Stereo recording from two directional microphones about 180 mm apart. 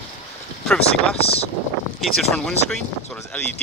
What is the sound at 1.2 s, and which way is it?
Speech, 35° left (ahead or behind).